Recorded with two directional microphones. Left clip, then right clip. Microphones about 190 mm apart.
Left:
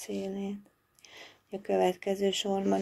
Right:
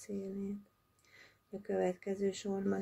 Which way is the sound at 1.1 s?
10° right (ahead or behind).